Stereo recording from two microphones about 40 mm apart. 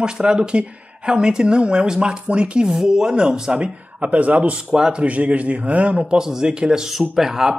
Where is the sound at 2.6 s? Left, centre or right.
Centre; by 4.6 s right.